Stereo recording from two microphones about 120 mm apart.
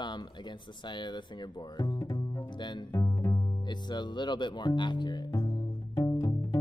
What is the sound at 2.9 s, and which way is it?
Music, 25° left (ahead or behind).